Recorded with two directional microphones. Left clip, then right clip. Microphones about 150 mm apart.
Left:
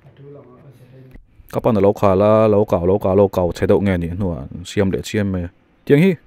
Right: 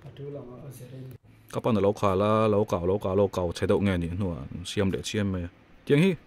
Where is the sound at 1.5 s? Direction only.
40° left (ahead or behind).